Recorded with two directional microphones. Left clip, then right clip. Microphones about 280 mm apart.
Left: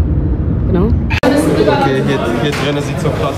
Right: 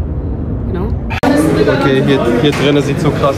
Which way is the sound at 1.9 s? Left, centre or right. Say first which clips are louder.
Right 3 dB; centre.